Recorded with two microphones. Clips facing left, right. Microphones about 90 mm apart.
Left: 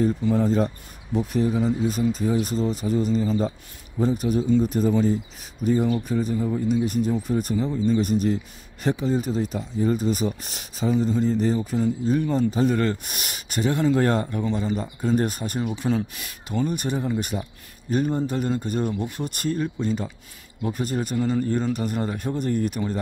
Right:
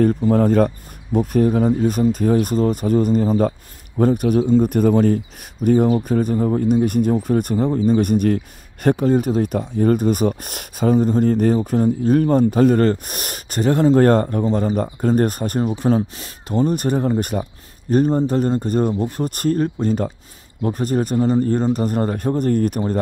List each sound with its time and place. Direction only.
0.0 s a man's voice: 55° right (ahead or behind)
5.9 s speech: 40° right (ahead or behind)
6.1 s speech: 50° right (ahead or behind)